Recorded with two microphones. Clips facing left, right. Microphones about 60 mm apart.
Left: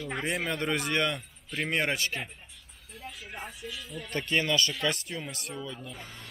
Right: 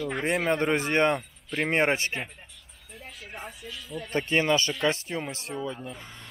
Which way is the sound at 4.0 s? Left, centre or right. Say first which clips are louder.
Right 4 dB; right.